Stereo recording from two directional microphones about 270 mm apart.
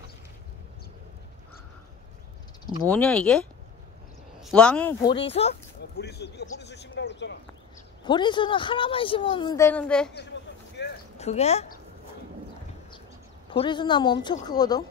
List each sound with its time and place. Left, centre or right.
2.9 s speech: centre
5.0 s speech: centre
5.9 s speech: left
8.0 s a man's voice: centre
10.8 s a sound: left
11.1 s speech: left
13.5 s a man's voice: centre